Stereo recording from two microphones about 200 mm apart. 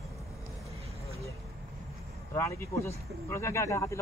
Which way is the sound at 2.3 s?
15° left (ahead or behind).